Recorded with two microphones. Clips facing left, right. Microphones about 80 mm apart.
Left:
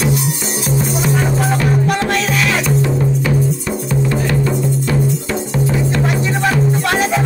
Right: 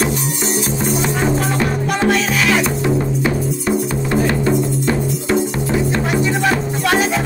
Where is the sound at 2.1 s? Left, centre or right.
Centre.